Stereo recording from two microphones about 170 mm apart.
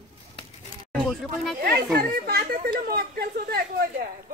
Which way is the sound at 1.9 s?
65° right (ahead or behind).